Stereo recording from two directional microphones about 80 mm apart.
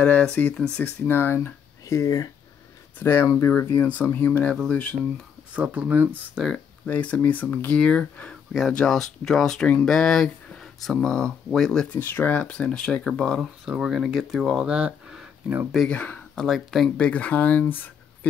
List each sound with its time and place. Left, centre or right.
0.0 s speech: centre
0.8 s speech: left
3.0 s speech: left
5.5 s speech: centre
6.9 s speech: centre
12.0 s speech: left
13.4 s speech: centre
14.6 s a sound: centre
15.9 s speech: centre
16.4 s speech: centre
16.9 s speech: centre